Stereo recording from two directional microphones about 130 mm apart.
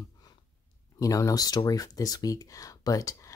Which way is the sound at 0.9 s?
25° left (ahead or behind).